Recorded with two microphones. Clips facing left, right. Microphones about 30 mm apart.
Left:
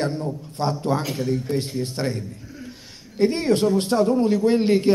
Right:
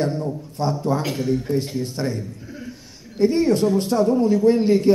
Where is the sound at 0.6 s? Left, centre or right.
Left.